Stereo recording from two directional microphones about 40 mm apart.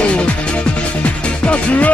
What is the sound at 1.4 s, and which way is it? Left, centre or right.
Music, left.